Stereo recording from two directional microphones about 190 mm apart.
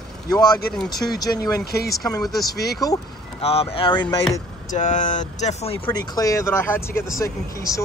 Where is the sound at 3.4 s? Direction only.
30° left (ahead or behind).